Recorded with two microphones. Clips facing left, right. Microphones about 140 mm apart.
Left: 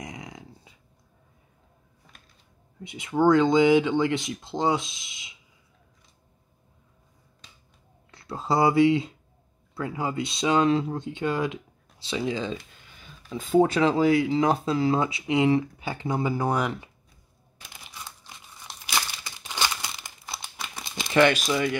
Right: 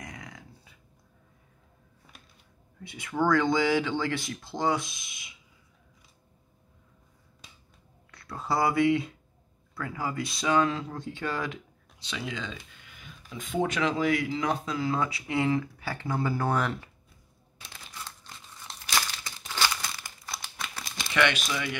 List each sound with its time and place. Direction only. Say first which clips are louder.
0.0 s a sound: left 4 dB; 20° left (ahead or behind)
2.8 s speech: left 6 dB; 20° left (ahead or behind)
8.1 s speech: left 4 dB; 25° left (ahead or behind)
17.7 s crumpling: even; 15° left (ahead or behind)
21.1 s speech: left 6 dB; 35° left (ahead or behind)